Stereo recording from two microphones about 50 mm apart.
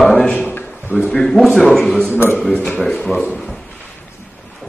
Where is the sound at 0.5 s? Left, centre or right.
Left.